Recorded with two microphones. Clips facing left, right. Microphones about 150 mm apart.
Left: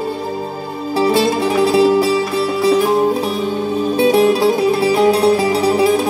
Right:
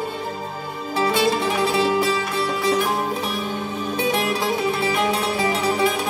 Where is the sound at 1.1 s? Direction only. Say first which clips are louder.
Left 5 dB; 35° left (ahead or behind).